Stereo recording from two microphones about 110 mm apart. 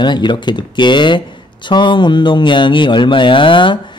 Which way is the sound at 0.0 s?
45° left (ahead or behind).